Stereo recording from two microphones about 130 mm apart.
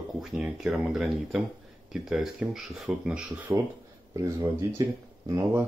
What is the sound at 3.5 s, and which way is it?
Speech, 25° right (ahead or behind).